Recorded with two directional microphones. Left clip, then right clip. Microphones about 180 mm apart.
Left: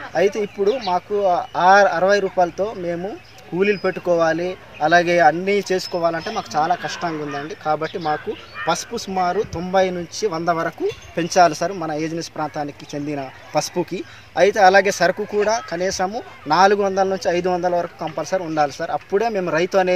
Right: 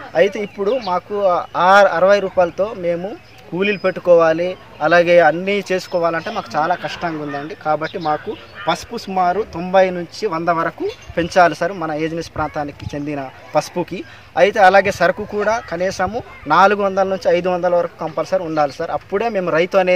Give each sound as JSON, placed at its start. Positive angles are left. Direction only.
{"t": 0.1, "sound": "speech", "side_deg": -5}
{"t": 0.7, "sound": "speech", "side_deg": -20}